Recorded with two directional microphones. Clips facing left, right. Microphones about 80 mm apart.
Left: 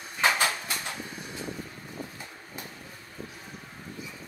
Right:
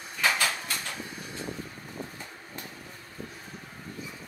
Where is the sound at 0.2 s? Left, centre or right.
Left.